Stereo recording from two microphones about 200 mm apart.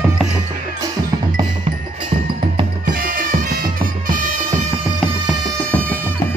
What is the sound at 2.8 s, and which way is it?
Music, 45° right (ahead or behind).